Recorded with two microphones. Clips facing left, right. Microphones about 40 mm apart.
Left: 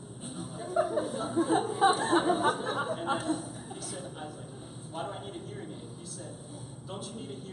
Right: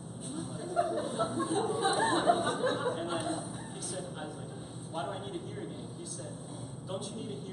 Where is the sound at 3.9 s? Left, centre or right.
Centre.